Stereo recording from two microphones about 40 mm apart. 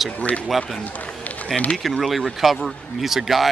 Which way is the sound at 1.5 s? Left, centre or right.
Left.